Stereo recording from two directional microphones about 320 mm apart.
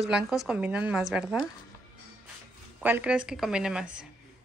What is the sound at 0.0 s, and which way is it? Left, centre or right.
A woman's voice, centre.